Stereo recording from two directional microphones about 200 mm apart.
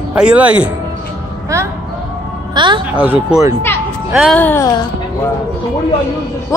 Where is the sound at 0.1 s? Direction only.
5° right (ahead or behind).